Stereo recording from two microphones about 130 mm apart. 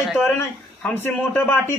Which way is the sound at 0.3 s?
15° left (ahead or behind).